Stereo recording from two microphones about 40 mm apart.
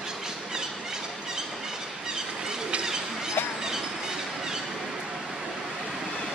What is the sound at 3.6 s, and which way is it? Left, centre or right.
Train, centre.